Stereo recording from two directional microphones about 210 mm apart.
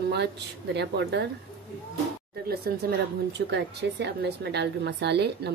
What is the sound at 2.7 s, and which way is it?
A woman's voice, 45° right (ahead or behind).